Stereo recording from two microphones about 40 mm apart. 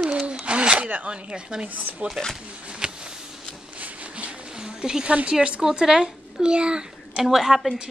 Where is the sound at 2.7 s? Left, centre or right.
Right.